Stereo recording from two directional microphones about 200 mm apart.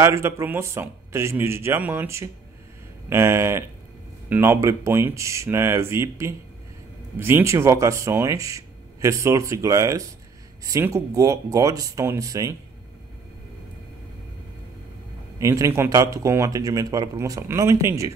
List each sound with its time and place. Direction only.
0.0 s speech: 15° right (ahead or behind)
15.3 s speech: 15° right (ahead or behind)